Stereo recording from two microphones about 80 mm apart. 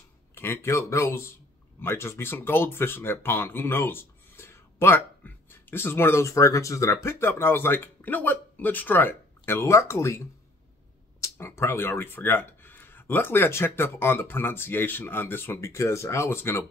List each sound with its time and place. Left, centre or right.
0.3 s speech: left